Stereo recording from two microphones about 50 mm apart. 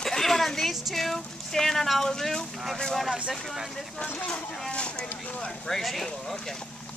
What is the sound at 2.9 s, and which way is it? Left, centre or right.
Speech, centre.